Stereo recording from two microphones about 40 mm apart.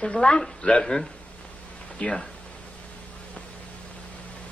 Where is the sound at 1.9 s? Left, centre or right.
Left.